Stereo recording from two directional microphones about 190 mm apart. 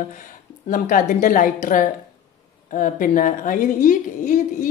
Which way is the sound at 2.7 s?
45° left (ahead or behind).